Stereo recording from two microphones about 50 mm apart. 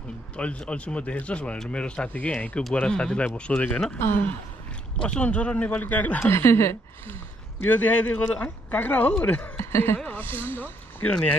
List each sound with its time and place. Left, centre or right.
0.4 s speech: left
4.0 s speech: left
5.0 s speech: left
6.2 s speech: left
7.6 s speech: left
9.6 s speech: left
10.0 s speech: left